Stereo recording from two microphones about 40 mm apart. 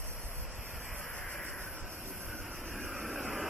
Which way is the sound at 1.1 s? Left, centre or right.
Left.